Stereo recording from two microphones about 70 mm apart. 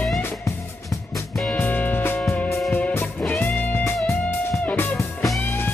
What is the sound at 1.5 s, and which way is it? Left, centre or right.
Music, left.